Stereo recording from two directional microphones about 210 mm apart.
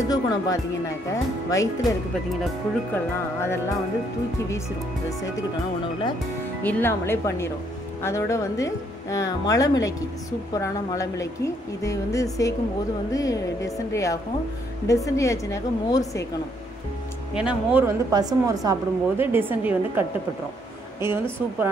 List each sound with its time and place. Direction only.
0.0 s speech: 15° left (ahead or behind)
6.6 s speech: 10° left (ahead or behind)
17.3 s speech: 5° right (ahead or behind)
18.1 s a woman's voice: 15° right (ahead or behind)